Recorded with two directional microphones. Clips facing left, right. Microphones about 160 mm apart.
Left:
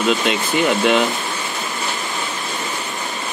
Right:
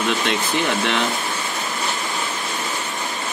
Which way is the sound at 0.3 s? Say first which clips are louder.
Left 3 dB; 5° left (ahead or behind).